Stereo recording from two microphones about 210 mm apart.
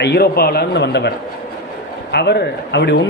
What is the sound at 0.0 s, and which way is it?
A man's voice, 50° left (ahead or behind).